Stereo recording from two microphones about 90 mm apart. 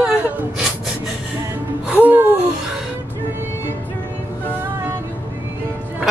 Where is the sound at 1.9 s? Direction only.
20° right (ahead or behind).